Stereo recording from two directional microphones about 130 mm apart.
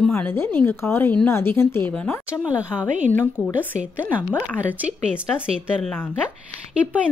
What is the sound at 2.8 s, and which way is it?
Speech, 70° right (ahead or behind).